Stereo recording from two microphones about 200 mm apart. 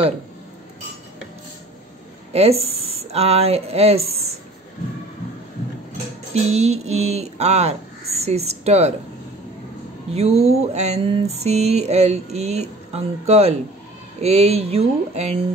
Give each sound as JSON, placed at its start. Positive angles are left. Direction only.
{"t": 2.3, "sound": "speech", "side_deg": -30}
{"t": 6.3, "sound": "mantra", "side_deg": -35}
{"t": 10.1, "sound": "mantra", "side_deg": -30}